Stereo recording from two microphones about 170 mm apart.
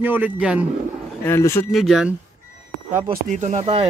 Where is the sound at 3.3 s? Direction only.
45° right (ahead or behind).